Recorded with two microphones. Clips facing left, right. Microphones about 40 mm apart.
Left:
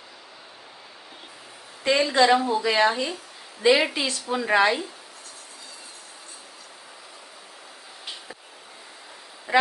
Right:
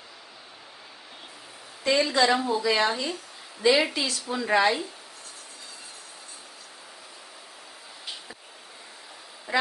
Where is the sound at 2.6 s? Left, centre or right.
Left.